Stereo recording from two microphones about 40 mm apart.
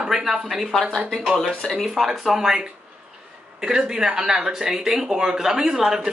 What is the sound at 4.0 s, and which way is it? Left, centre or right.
Speech, centre.